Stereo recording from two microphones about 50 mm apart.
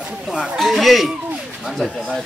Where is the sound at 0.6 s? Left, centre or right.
Centre.